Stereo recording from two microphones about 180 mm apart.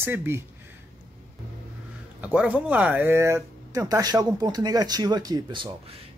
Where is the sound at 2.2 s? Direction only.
10° right (ahead or behind).